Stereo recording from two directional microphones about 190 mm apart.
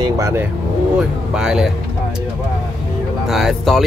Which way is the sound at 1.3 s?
Centre (ahead or behind).